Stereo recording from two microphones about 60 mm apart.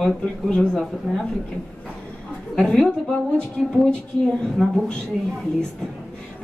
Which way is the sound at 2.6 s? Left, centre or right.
Centre.